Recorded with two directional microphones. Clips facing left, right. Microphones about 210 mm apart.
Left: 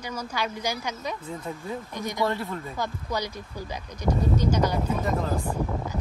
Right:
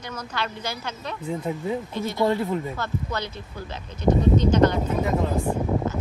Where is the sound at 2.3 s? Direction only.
15° right (ahead or behind).